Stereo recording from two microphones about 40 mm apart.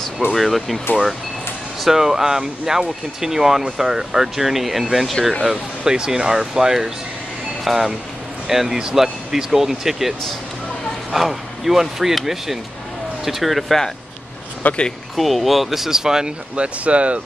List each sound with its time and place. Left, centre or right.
0.3 s speech: centre
1.8 s speech: centre
5.4 s speech: centre
14.6 s speech: left
15.1 s speech: centre; by 17.2 s right